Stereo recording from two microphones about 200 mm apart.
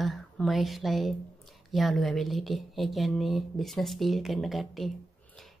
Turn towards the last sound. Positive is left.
turn(degrees=0)  # may be behind; listen again after turning